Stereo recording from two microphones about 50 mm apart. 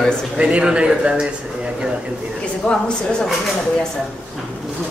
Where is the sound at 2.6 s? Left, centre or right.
Left.